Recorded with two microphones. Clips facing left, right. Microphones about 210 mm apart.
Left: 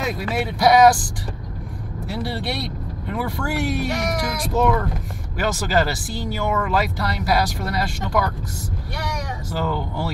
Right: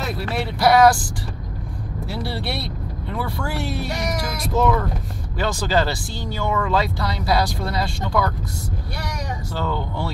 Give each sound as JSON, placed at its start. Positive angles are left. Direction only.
{"t": 0.0, "sound": "speech", "side_deg": 20}
{"t": 2.4, "sound": "speech", "side_deg": 15}
{"t": 9.5, "sound": "speech", "side_deg": 5}